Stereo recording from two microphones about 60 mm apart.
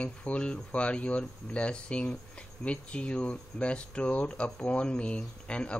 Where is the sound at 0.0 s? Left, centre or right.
Centre.